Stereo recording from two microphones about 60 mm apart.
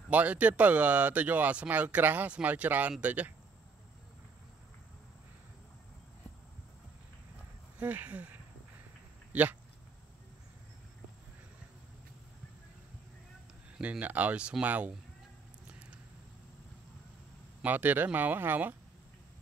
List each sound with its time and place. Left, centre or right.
0.1 s speech: right
7.8 s speech: right
13.7 s speech: right
17.6 s speech: right